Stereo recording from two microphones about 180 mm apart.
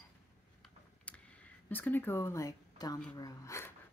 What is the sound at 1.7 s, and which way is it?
Speech, 10° left (ahead or behind).